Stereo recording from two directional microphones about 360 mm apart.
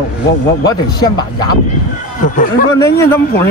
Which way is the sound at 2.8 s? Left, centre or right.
Centre.